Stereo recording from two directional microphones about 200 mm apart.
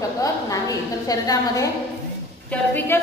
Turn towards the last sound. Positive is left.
turn(degrees=10)  # may be behind; listen again after turning